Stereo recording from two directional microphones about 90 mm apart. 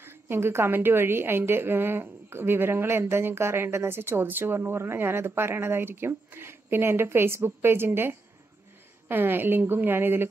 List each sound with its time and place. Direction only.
0.0 s a woman's voice: 25° right (ahead or behind)